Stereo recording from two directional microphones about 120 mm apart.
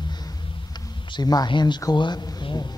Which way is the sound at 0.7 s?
40° left (ahead or behind).